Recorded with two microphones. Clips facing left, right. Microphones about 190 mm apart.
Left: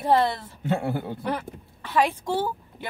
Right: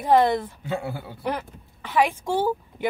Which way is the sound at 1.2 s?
15° right (ahead or behind).